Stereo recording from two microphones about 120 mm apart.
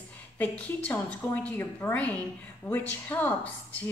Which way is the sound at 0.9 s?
15° left (ahead or behind).